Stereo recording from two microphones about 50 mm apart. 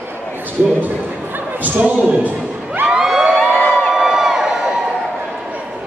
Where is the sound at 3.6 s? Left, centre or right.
Left.